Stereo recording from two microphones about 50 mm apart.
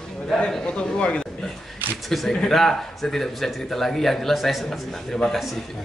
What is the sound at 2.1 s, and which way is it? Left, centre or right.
A man's voice, centre.